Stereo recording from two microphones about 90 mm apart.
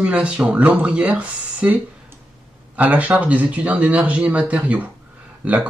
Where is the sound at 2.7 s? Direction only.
15° right (ahead or behind).